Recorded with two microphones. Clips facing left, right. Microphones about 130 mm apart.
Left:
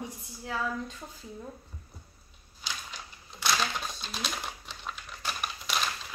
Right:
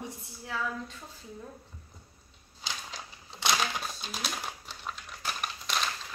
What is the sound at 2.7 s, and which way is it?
Typewriter, 30° right (ahead or behind).